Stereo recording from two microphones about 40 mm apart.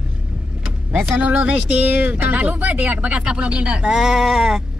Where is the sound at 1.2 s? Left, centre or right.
Right.